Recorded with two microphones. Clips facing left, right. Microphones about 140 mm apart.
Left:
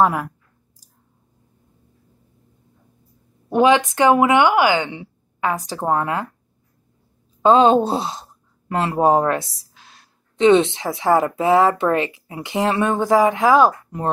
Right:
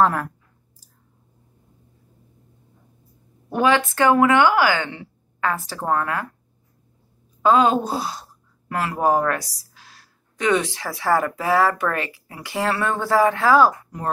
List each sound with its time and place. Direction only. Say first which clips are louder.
0.0 s speech: left 1 dB; 10° left (ahead or behind)
3.4 s speech: left 4 dB; 20° left (ahead or behind)
7.4 s speech: left 4 dB; 25° left (ahead or behind)